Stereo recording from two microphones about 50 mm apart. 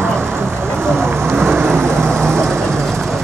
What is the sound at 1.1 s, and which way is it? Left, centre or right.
Rain, right.